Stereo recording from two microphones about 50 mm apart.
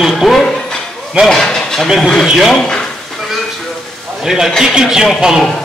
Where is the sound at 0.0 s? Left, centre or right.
Centre.